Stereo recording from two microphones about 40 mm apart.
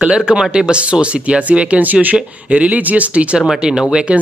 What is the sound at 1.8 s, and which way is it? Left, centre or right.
A man's voice, right.